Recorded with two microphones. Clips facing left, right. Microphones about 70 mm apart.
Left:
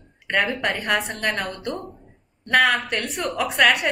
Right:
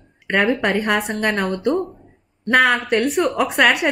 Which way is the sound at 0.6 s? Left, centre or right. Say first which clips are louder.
Right 4 dB; centre.